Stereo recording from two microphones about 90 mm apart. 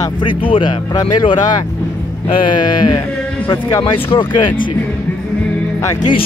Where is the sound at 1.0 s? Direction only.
50° left (ahead or behind).